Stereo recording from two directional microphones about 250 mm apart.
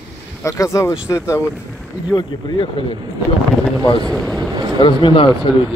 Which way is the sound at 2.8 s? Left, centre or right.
Left.